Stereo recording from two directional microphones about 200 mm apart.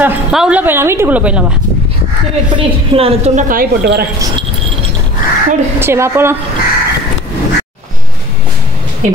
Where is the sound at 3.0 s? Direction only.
30° right (ahead or behind); by 4.1 s 55° right (ahead or behind).